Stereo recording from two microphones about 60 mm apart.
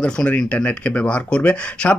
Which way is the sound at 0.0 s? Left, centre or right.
Centre.